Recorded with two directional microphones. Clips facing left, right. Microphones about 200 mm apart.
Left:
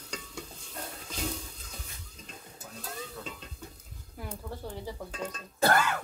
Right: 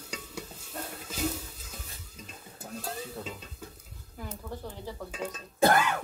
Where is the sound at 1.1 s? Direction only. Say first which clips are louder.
Right 4 dB; 5° right (ahead or behind).